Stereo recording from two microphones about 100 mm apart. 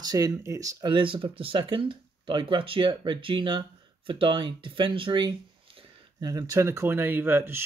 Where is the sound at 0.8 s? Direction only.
55° right (ahead or behind).